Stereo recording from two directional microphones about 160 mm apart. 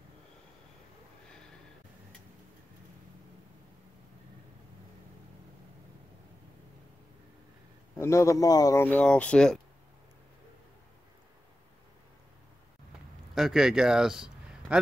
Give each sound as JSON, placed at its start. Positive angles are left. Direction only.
{"t": 8.0, "sound": "speech", "side_deg": 20}
{"t": 8.8, "sound": "speech", "side_deg": 10}
{"t": 13.3, "sound": "a man's voice", "side_deg": 0}